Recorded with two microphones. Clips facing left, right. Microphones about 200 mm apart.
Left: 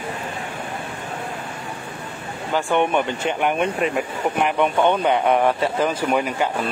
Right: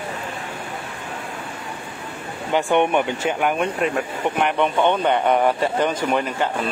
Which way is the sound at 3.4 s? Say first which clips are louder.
Left 1 dB; centre (ahead or behind).